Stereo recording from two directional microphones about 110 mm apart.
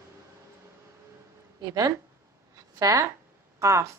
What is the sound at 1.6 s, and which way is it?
Speech, 35° right (ahead or behind).